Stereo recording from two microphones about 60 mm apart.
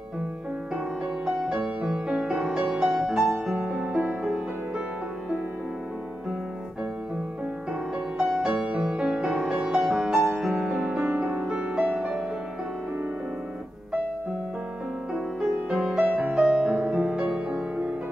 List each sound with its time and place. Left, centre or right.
1.2 s music: centre
3.5 s music: right
4.2 s music: centre
8.2 s music: centre
11.1 s music: centre
15.7 s music: centre
17.5 s music: right